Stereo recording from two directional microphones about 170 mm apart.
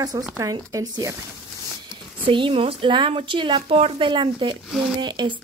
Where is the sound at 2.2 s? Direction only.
30° right (ahead or behind).